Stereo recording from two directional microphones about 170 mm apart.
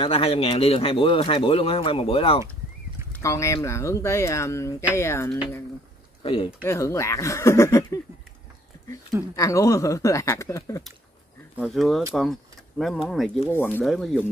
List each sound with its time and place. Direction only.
0.0 s a man's voice: 35° left (ahead or behind)
3.1 s speech: 15° left (ahead or behind)
6.2 s a man's voice: 30° left (ahead or behind)
6.6 s speech: 15° left (ahead or behind)
9.3 s speech: 20° left (ahead or behind)
11.5 s speech: centre (ahead or behind)
13.5 s speech: 10° left (ahead or behind)
13.8 s speech: centre (ahead or behind)